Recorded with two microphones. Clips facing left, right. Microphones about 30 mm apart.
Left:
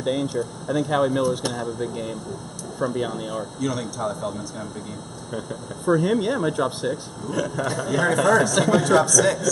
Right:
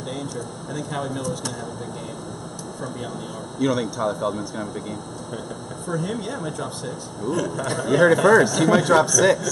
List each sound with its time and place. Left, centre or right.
0.0 s speech: left
3.6 s a man's voice: centre
5.9 s speech: centre
6.9 s a man's voice: centre